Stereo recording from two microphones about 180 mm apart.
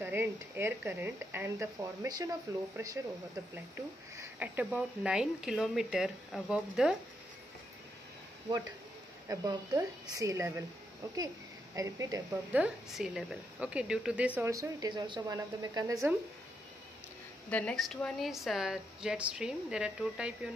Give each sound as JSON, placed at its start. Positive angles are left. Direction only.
{"t": 0.0, "sound": "a woman's voice", "side_deg": -10}
{"t": 9.3, "sound": "a woman's voice", "side_deg": -20}
{"t": 11.7, "sound": "a woman's voice", "side_deg": -20}
{"t": 12.5, "sound": "a woman's voice", "side_deg": -5}
{"t": 17.5, "sound": "speech", "side_deg": 5}